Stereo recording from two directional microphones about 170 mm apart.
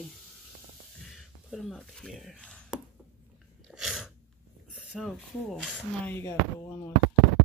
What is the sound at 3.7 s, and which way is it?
Sneeze, centre (ahead or behind).